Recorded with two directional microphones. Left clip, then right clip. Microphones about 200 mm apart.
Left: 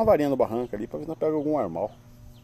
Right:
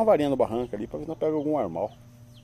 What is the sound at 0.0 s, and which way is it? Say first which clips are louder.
Speech: even; centre (ahead or behind).